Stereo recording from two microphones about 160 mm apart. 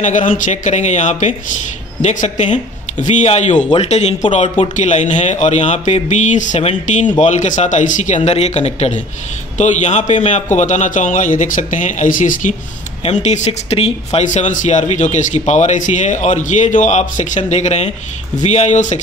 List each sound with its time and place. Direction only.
0.0 s speech: 50° left (ahead or behind)